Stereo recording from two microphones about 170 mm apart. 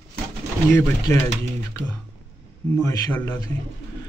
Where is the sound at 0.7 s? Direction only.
15° left (ahead or behind).